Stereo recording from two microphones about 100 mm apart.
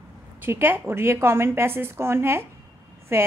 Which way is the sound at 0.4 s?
20° right (ahead or behind).